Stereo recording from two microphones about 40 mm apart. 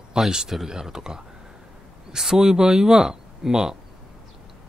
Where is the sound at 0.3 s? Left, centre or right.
Centre.